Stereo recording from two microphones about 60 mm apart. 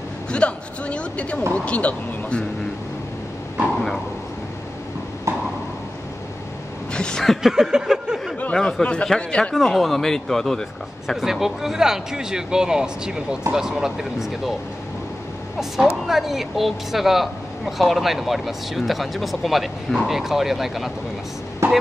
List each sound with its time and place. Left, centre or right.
0.3 s speech: centre
6.9 s a sound: centre
7.2 s a sound: centre
8.5 s speech: centre
9.6 s speech: centre
11.1 s speech: centre
15.7 s speech: centre